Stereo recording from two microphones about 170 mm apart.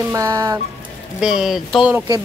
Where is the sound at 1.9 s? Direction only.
20° right (ahead or behind).